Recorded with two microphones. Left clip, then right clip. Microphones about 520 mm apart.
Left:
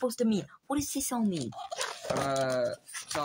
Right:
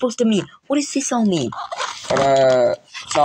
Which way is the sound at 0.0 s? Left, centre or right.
Left.